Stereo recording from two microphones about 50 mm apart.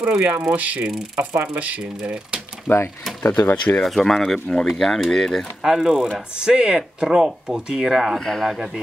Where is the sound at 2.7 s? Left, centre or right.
Left.